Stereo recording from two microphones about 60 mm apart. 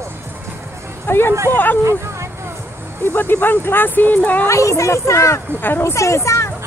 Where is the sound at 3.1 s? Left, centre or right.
Left.